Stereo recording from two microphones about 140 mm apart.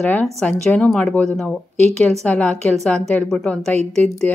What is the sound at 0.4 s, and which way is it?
A woman's voice, 10° left (ahead or behind).